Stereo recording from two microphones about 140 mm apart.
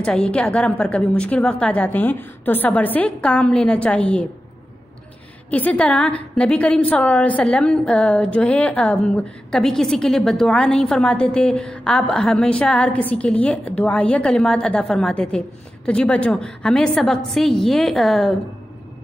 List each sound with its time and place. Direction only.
0.0 s a woman's voice: 5° left (ahead or behind)
5.5 s a woman's voice: 10° left (ahead or behind)